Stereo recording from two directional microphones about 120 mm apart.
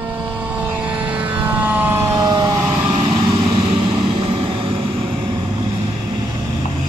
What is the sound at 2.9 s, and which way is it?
Vehicle, 40° right (ahead or behind).